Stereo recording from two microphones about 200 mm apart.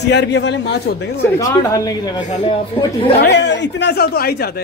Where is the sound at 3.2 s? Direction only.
60° left (ahead or behind).